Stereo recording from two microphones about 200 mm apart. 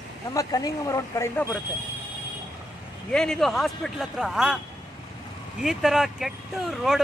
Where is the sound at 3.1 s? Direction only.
5° left (ahead or behind).